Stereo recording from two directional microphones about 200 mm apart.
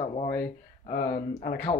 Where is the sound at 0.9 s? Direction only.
45° left (ahead or behind).